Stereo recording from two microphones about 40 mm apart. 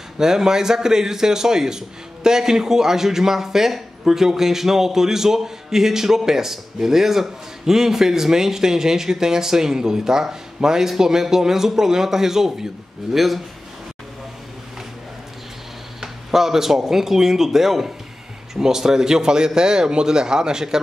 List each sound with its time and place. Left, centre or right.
0.2 s a man's voice: centre
16.0 s a man's voice: centre